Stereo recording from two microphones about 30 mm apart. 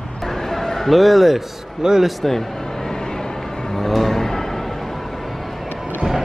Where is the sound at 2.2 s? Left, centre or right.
Centre.